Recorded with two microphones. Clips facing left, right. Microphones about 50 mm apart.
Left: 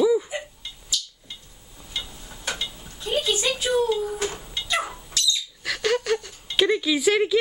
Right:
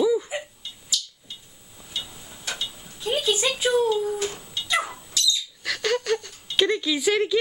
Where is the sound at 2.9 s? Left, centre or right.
Centre.